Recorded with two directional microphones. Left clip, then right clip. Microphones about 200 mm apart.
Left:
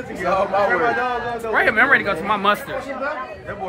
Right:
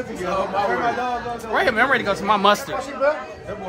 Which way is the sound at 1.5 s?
20° right (ahead or behind).